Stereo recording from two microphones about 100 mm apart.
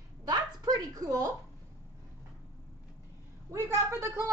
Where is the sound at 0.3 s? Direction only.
35° right (ahead or behind).